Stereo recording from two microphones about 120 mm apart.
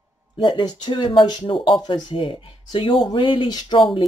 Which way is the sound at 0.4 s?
40° left (ahead or behind).